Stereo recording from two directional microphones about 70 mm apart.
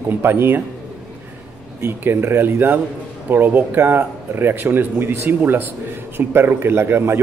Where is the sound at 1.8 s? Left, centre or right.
Right.